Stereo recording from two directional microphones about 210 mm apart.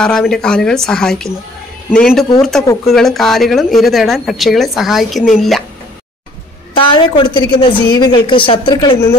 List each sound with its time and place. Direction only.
0.0 s speech: 5° left (ahead or behind)
6.8 s a woman's voice: 25° left (ahead or behind)